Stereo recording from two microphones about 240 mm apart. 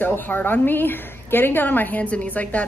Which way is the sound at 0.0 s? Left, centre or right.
Centre.